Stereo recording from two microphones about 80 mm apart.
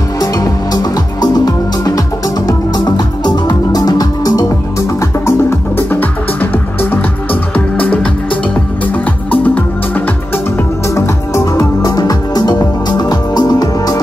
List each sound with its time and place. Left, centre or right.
0.2 s music: left
5.2 s music: left
11.0 s music: left